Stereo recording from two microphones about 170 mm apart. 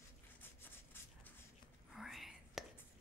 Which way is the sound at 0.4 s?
10° left (ahead or behind).